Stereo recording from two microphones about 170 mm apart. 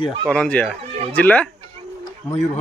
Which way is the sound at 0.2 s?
5° left (ahead or behind).